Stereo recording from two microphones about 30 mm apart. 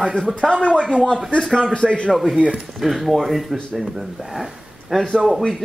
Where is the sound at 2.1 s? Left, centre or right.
Centre.